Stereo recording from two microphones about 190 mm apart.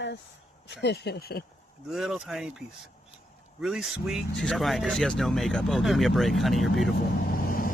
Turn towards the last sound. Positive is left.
turn(degrees=50)  # may be behind; listen again after turning